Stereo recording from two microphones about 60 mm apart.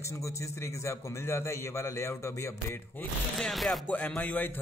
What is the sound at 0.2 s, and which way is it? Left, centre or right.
Speech, left.